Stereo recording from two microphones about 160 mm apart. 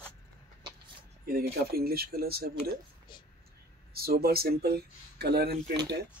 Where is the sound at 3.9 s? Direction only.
75° right (ahead or behind).